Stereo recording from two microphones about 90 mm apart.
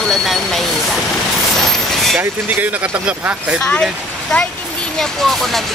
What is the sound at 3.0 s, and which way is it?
Speech, 10° right (ahead or behind).